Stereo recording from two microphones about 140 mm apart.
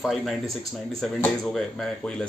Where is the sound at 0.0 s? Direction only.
Centre (ahead or behind).